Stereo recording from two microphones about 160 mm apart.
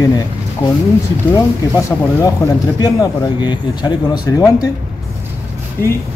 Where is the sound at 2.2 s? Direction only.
20° left (ahead or behind).